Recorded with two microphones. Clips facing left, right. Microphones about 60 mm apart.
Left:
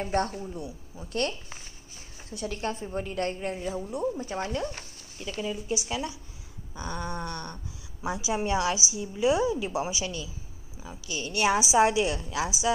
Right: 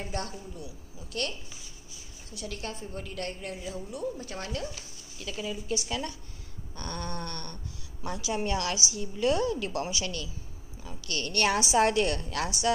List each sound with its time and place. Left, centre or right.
0.0 s a woman's voice: left
2.3 s a woman's voice: left
5.4 s a woman's voice: centre